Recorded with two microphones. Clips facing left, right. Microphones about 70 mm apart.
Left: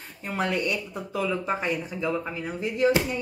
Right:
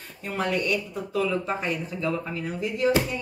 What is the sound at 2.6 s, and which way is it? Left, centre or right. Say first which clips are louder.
Speech: left 1 dB; left.